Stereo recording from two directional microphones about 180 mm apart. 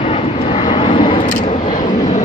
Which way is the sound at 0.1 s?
35° left (ahead or behind).